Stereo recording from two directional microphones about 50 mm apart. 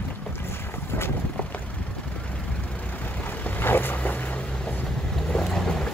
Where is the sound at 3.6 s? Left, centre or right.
Left.